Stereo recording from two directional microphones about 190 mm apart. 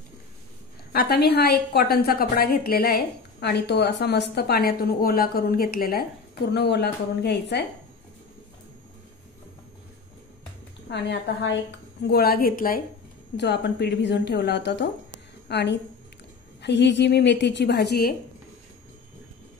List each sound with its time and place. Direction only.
0.9 s a woman's voice: 60° left (ahead or behind)
10.9 s a woman's voice: 65° left (ahead or behind)
13.4 s a woman's voice: 65° left (ahead or behind)